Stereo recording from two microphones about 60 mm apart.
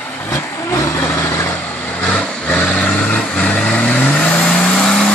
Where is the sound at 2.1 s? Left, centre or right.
Centre.